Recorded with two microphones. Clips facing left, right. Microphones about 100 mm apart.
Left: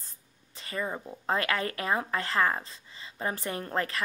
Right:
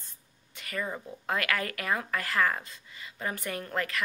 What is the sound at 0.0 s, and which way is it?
Speech, 35° left (ahead or behind).